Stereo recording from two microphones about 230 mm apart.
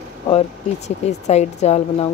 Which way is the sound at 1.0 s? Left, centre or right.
Left.